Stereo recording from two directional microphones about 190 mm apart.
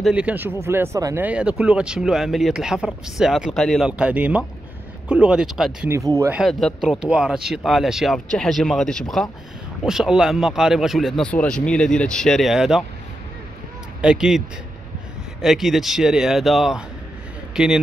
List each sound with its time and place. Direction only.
0.0 s speech: 5° right (ahead or behind)
5.9 s speech: 15° right (ahead or behind)
6.3 s speech: centre (ahead or behind)
14.0 s speech: 5° right (ahead or behind)
15.4 s speech: centre (ahead or behind)